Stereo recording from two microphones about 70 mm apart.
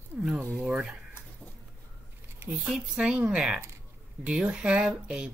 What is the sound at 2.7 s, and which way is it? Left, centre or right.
Speech, centre.